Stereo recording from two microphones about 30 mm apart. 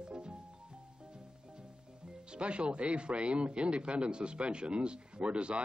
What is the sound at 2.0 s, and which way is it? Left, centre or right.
Speech, right.